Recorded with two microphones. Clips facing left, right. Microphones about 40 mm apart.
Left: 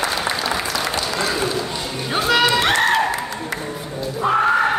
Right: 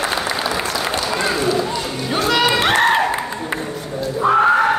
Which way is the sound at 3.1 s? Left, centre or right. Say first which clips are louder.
Right 2 dB; right.